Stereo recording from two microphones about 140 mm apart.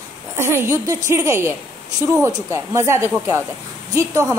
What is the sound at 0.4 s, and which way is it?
A woman's voice, 20° right (ahead or behind).